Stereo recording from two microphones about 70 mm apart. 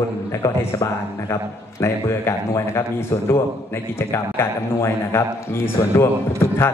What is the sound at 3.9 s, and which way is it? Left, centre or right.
A man's voice, left.